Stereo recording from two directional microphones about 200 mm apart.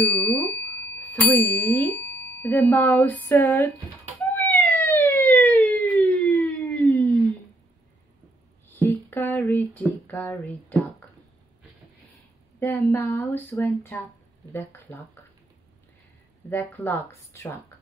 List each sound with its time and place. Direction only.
0.0 s a sound: 5° left (ahead or behind)
4.3 s police car: 10° left (ahead or behind)
8.6 s a sound: 10° left (ahead or behind)
10.0 s speech: 10° left (ahead or behind)
12.5 s speech: 10° left (ahead or behind)
16.4 s speech: 10° left (ahead or behind)